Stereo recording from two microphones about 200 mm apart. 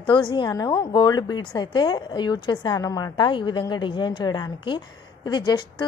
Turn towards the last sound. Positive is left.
turn(degrees=20)  # may be behind; listen again after turning